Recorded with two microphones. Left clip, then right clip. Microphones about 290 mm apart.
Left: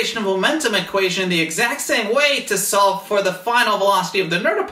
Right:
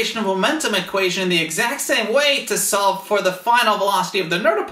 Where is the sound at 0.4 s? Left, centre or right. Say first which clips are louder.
Left 2 dB; right.